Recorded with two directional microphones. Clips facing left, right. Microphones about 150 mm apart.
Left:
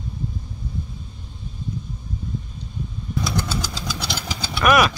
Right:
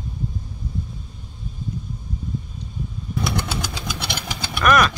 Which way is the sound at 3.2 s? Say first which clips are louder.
Right 1 dB; 60° right (ahead or behind).